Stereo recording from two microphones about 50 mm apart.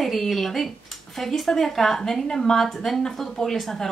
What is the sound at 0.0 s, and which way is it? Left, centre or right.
A woman's voice, centre.